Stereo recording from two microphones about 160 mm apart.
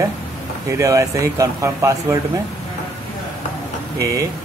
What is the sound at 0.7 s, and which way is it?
Speech, 20° right (ahead or behind).